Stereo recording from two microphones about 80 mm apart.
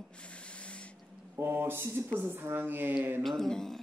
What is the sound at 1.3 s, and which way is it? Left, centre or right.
Speech, right.